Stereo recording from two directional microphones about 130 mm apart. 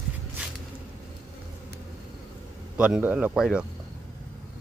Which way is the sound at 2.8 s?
10° right (ahead or behind).